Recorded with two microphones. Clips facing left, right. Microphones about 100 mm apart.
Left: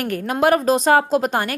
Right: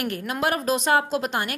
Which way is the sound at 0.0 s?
35° left (ahead or behind).